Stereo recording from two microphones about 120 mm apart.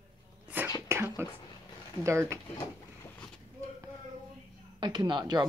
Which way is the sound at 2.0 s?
25° right (ahead or behind).